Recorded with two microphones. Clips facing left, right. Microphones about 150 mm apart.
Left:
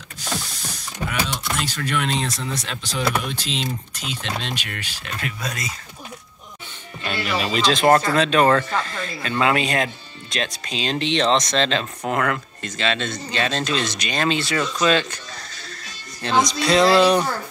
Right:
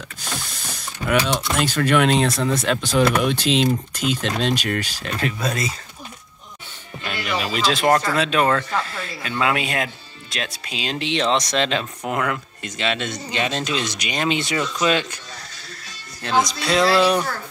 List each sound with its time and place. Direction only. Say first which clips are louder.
1.3 s speech: right 6 dB; 60° right (ahead or behind)
4.1 s speech: right 7 dB; 45° right (ahead or behind)
7.0 s music: left 1 dB; centre (ahead or behind)
7.3 s speech: left 1 dB; 10° right (ahead or behind)
16.2 s speech: left 1 dB; 5° right (ahead or behind)